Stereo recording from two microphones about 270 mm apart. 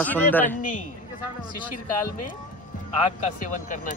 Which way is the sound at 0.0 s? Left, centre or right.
Centre.